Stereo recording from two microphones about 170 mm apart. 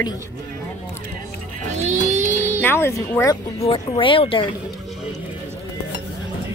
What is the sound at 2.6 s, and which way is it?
Speech, 15° left (ahead or behind).